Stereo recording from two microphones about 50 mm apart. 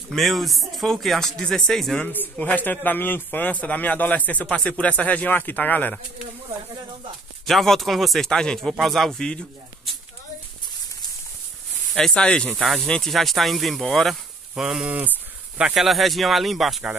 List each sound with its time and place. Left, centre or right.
0.1 s speech: centre
2.4 s a man's voice: left
7.4 s speech: centre
11.9 s speech: centre
13.1 s speech: centre
14.5 s speech: centre
14.9 s speech: right
15.7 s speech: centre